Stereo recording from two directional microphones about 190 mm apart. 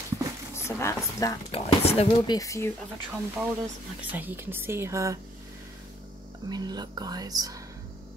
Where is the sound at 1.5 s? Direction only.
30° left (ahead or behind).